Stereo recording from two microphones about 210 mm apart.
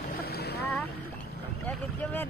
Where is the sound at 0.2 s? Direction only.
50° left (ahead or behind).